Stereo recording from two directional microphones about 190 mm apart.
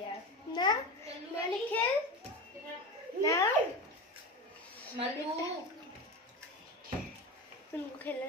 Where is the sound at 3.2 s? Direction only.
15° left (ahead or behind).